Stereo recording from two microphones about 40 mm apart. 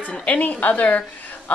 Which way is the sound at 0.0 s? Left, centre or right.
Left.